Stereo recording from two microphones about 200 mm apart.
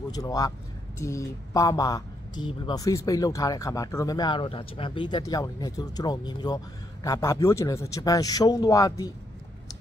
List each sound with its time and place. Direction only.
0.1 s speech: 20° left (ahead or behind)